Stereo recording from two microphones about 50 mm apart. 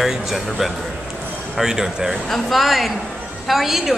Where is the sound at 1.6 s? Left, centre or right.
Centre.